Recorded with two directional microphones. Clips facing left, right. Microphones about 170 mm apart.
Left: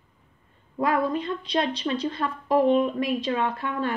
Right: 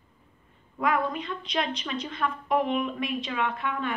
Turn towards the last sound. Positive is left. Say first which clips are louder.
# left 2 dB
turn(degrees=35)  # may be behind; listen again after turning